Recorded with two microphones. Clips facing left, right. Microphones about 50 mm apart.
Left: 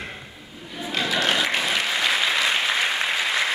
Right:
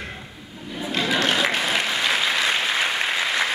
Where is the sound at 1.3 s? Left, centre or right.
Right.